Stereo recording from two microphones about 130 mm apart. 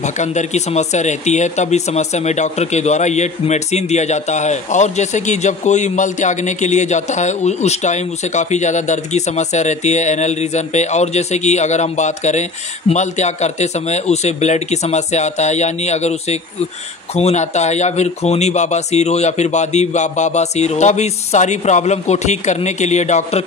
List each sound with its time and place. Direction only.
0.0 s speech: 65° left (ahead or behind)